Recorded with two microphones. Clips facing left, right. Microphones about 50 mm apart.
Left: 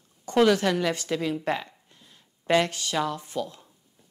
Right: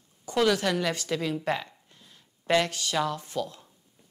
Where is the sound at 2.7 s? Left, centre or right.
Left.